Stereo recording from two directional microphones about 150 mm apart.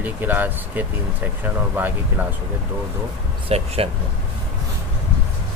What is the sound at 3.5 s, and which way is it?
Speech, 40° right (ahead or behind).